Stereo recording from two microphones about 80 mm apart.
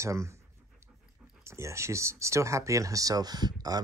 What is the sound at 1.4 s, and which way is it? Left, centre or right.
Speech, right.